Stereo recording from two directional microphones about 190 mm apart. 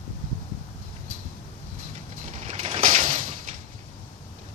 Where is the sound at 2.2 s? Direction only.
40° right (ahead or behind).